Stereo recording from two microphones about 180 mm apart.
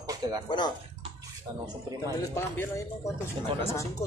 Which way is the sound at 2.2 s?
15° left (ahead or behind).